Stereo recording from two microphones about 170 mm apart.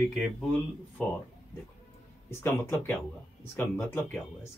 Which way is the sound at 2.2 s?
15° left (ahead or behind).